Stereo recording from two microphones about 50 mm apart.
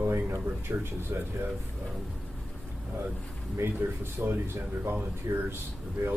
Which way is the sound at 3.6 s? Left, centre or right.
Right.